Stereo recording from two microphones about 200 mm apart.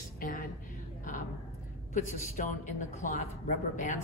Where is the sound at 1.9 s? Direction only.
40° left (ahead or behind).